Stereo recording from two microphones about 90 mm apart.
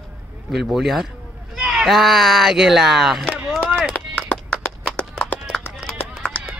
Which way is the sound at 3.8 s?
10° left (ahead or behind).